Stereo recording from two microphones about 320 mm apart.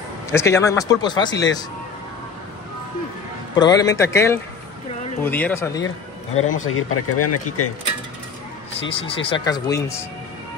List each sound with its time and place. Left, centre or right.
0.3 s speech: centre
3.5 s speech: centre
6.4 s speech: left
6.7 s speech: left
8.8 s speech: centre